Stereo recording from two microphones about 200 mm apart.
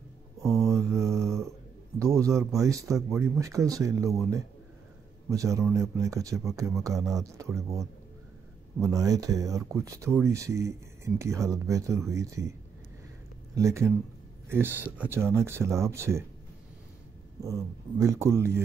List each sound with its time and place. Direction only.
0.4 s mantra: 15° right (ahead or behind)
2.0 s speech: 15° right (ahead or behind)
5.3 s speech: 15° right (ahead or behind)
13.6 s speech: 15° right (ahead or behind)
17.4 s speech: 15° right (ahead or behind)